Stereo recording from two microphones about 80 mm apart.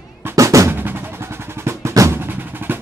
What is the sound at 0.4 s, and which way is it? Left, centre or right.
Drum, right.